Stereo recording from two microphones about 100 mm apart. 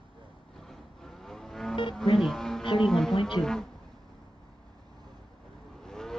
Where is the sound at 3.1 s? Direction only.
55° left (ahead or behind).